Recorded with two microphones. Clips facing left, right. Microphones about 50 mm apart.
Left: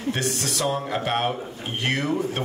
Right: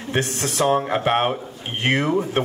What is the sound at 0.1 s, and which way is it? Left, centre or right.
A man's voice, right.